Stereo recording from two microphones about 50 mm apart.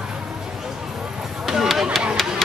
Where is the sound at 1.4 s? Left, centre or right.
Centre.